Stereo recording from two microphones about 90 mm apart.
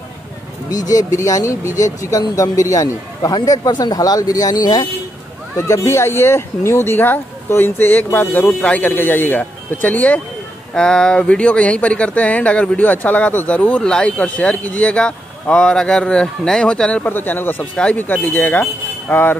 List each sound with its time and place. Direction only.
0.7 s speech: 45° left (ahead or behind)
5.7 s speech: 30° left (ahead or behind); by 17.1 s 10° left (ahead or behind)
17.1 s speech: 20° left (ahead or behind)